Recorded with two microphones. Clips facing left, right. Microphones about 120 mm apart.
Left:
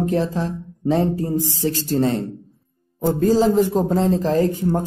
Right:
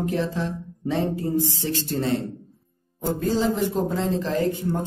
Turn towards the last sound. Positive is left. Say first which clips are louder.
# left 5 dB
turn(degrees=35)  # may be behind; listen again after turning